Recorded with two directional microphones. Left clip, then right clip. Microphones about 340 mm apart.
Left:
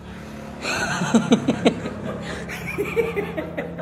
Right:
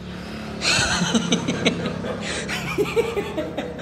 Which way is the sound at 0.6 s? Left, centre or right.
Centre.